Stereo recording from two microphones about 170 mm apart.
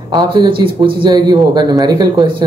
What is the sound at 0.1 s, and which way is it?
Speech, 20° right (ahead or behind).